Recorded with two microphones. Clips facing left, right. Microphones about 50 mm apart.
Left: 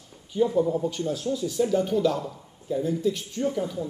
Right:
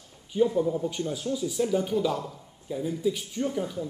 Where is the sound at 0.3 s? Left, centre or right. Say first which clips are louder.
Left 1 dB; centre.